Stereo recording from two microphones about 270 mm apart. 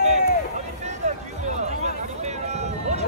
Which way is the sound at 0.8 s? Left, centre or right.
Right.